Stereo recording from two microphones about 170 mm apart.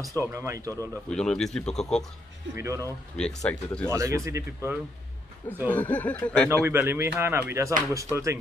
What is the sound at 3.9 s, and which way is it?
Speech, 20° right (ahead or behind).